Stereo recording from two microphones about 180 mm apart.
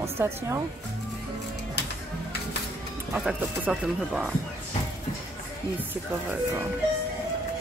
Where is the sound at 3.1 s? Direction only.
5° right (ahead or behind).